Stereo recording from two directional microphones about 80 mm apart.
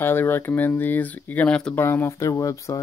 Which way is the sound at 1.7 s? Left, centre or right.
Left.